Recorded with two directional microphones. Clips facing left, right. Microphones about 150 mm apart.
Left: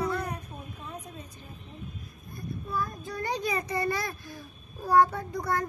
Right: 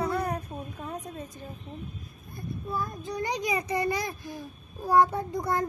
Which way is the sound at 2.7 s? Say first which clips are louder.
Right 1 dB; 25° right (ahead or behind).